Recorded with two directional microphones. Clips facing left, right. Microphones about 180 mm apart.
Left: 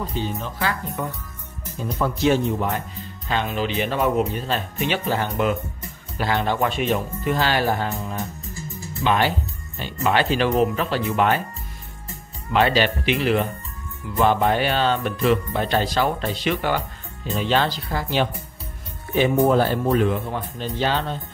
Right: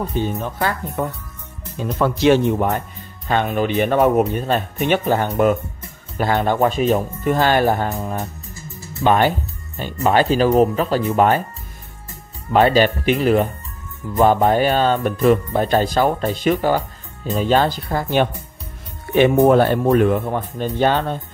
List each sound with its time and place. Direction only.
0.1 s music: 50° right (ahead or behind)
1.8 s speech: 80° right; by 2.8 s 60° right (ahead or behind)
3.3 s music: 50° right (ahead or behind)
12.5 s music: 45° right (ahead or behind)
19.1 s music: 70° right (ahead or behind); by 21.2 s 50° right (ahead or behind)